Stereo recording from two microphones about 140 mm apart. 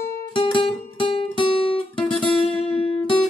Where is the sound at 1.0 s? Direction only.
40° left (ahead or behind).